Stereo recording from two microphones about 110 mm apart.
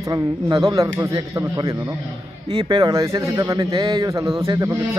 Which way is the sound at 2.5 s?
45° right (ahead or behind).